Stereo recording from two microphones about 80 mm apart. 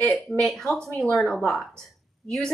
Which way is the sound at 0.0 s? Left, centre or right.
Centre.